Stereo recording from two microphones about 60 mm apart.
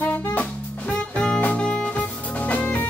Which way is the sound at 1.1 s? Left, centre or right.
Centre.